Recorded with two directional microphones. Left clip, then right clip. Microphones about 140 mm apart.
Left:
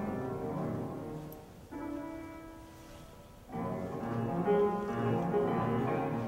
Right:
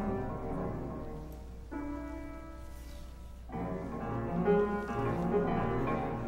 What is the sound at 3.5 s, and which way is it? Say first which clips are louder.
Music: left 1 dB; 30° right (ahead or behind).